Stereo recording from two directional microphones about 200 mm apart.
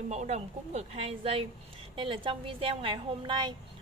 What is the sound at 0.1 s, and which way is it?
A woman's voice, 35° right (ahead or behind).